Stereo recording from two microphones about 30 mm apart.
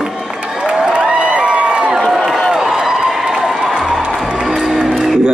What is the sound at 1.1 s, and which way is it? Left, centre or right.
Crowd, right.